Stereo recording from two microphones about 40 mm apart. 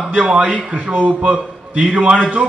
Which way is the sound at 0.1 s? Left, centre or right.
Right.